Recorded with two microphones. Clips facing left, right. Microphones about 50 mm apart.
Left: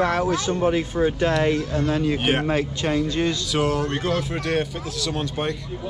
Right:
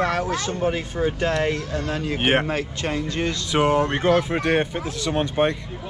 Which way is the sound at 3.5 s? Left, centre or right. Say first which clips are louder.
Right 3 dB; right.